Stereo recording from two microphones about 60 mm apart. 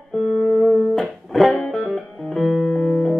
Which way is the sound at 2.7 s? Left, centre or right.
Centre.